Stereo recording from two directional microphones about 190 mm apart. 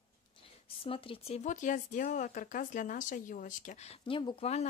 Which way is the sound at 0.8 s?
30° left (ahead or behind).